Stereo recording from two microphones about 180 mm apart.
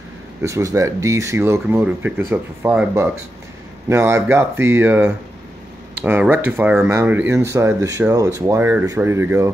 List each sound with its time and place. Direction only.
0.4 s speech: 15° right (ahead or behind)